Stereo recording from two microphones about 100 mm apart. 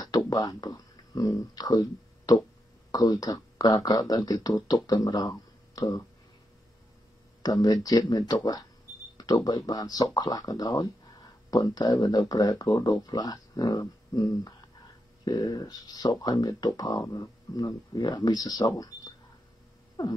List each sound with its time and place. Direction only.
0.3 s speech: 40° left (ahead or behind)
7.4 s speech: 40° left (ahead or behind)